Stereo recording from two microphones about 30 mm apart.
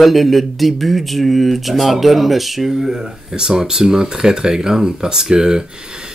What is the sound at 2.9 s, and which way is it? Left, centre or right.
Speech, centre.